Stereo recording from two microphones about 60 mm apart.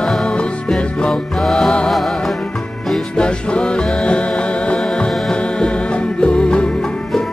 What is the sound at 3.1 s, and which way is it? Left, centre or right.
Music, centre.